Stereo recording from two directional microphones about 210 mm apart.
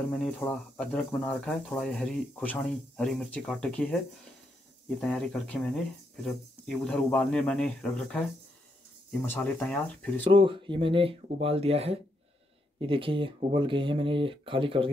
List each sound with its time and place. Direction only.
0.1 s speech: 5° left (ahead or behind)
10.2 s speech: 25° right (ahead or behind)